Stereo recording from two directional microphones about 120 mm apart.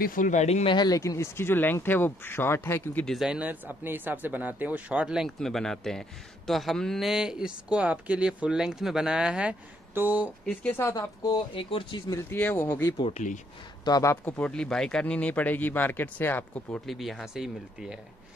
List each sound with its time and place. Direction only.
0.2 s speech: 85° left
0.7 s speech: 35° left (ahead or behind); by 3.1 s 15° left (ahead or behind)
3.1 s speech: 5° right (ahead or behind)
10.4 s speech: 10° left (ahead or behind)
11.0 s speech: 40° left (ahead or behind)
12.1 s speech: 20° left (ahead or behind)
13.8 s speech: 35° left (ahead or behind)
14.2 s speech: 10° left (ahead or behind)
16.8 s speech: centre (ahead or behind)